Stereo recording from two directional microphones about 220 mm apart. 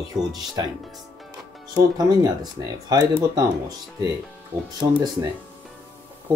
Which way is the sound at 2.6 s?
15° right (ahead or behind).